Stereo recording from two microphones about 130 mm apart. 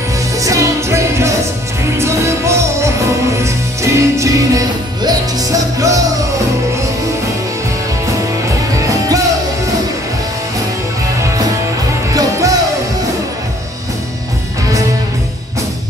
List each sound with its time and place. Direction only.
0.4 s music: 25° right (ahead or behind)
8.7 s music: 25° right (ahead or behind)
12.1 s music: 25° right (ahead or behind)